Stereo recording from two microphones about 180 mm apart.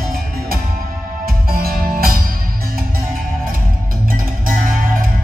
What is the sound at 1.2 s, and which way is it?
Music, 55° right (ahead or behind).